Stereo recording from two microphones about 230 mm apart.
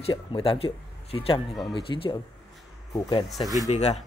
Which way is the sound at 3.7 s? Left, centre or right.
Left.